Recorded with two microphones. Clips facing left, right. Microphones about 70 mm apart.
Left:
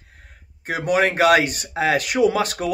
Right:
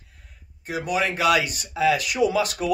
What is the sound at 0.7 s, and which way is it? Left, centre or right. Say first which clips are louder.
Speech: left 5 dB; left.